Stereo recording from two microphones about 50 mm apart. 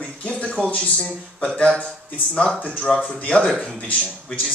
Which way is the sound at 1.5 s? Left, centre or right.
Centre.